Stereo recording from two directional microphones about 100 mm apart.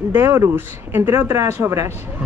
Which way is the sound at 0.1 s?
25° right (ahead or behind).